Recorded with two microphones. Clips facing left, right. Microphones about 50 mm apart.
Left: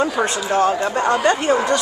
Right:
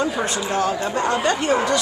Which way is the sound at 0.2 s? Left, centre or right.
Left.